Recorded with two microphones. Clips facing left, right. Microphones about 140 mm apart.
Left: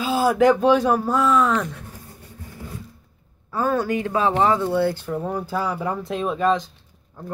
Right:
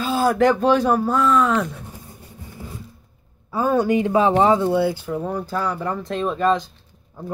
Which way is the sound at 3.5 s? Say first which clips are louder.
Right 3 dB; 15° right (ahead or behind).